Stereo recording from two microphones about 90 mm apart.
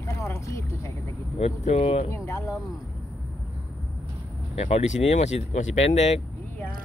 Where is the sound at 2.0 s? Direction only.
35° left (ahead or behind).